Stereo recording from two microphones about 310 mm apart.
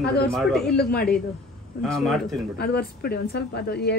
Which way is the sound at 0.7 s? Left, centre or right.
Left.